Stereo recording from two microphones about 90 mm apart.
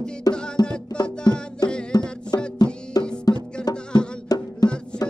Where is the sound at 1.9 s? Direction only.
45° left (ahead or behind).